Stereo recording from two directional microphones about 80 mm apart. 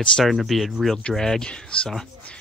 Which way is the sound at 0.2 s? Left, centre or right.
Centre.